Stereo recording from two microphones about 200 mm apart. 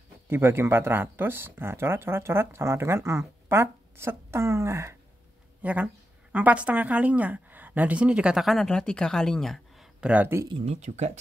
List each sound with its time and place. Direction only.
0.3 s a woman's voice: 10° right (ahead or behind)
10.5 s speech: 30° right (ahead or behind)